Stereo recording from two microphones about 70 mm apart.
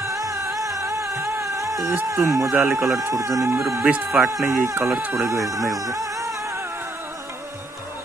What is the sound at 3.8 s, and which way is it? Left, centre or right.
Speech, centre.